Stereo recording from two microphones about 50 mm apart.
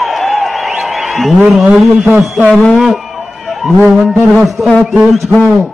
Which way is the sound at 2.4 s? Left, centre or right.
Centre.